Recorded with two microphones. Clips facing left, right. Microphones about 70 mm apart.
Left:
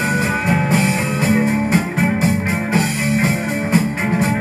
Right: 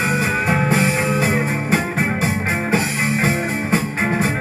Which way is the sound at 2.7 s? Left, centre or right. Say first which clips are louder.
Left 3 dB; right.